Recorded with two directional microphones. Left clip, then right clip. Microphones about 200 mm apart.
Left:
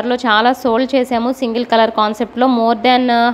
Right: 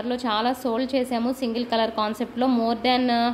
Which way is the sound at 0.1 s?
25° left (ahead or behind).